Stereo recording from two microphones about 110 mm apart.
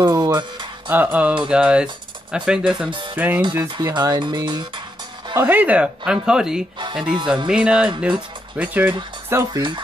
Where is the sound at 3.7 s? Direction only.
40° right (ahead or behind).